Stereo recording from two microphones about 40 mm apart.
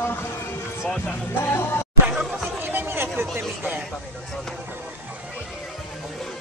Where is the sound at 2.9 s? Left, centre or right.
Right.